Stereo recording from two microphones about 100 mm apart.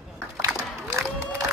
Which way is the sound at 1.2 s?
25° right (ahead or behind).